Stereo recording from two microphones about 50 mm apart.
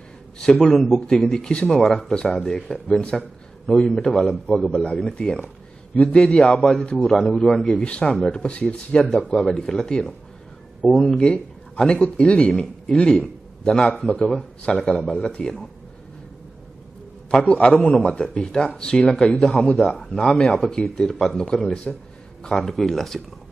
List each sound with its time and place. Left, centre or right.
0.4 s speech: centre
1.1 s speech: centre
1.7 s speech: centre
4.6 s a man's voice: left
9.5 s speech: centre
11.1 s a man's voice: centre
14.2 s speech: centre
15.0 s speech: centre
17.5 s a man's voice: left
20.0 s speech: centre